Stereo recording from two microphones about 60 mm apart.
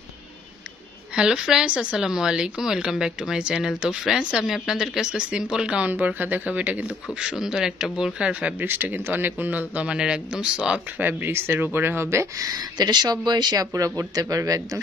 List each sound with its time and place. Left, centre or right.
1.1 s speech: centre
5.9 s a man's voice: right
7.2 s speech: centre
8.5 s a man's voice: right; by 10.8 s centre
11.0 s speech: right
12.4 s speech: right